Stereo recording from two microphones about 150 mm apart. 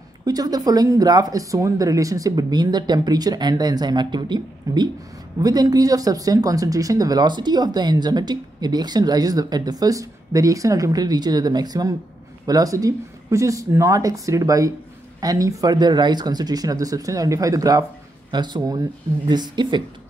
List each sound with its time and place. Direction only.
0.2 s speech: 25° right (ahead or behind)